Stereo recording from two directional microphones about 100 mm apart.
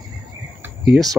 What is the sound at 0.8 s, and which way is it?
Speech, 5° right (ahead or behind).